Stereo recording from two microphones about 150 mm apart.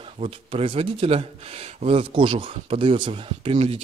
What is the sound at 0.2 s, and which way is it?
Speech, 40° right (ahead or behind).